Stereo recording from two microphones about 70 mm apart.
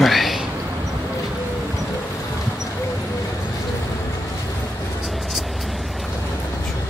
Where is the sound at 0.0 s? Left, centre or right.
Centre.